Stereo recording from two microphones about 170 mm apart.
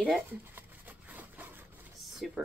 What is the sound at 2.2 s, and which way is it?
Speech, centre (ahead or behind).